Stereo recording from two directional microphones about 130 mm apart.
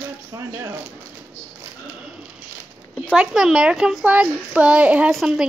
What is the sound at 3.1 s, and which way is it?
Speech, 5° right (ahead or behind).